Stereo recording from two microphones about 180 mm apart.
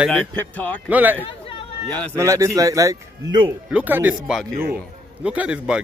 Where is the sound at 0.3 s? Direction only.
5° left (ahead or behind).